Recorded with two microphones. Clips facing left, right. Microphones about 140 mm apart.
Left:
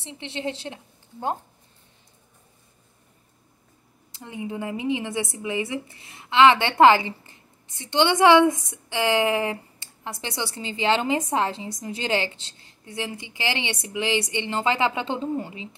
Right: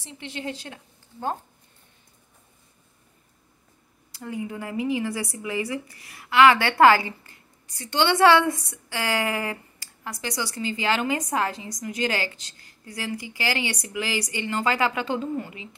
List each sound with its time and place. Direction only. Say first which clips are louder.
0.0 s a woman's voice: left 3 dB; 25° left (ahead or behind)
4.1 s a woman's voice: right 1 dB; 20° left (ahead or behind)